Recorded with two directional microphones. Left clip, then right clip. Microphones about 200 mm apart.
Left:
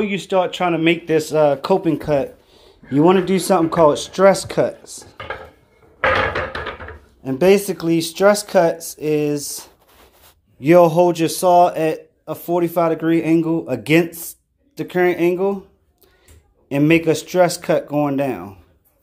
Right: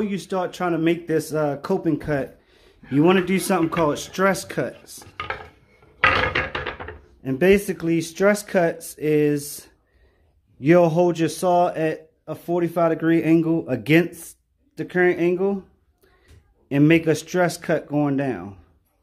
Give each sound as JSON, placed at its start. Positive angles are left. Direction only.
{"t": 0.0, "sound": "speech", "side_deg": -10}
{"t": 7.2, "sound": "speech", "side_deg": -10}
{"t": 8.9, "sound": "a sound", "side_deg": -20}
{"t": 10.6, "sound": "speech", "side_deg": -10}
{"t": 16.6, "sound": "speech", "side_deg": -15}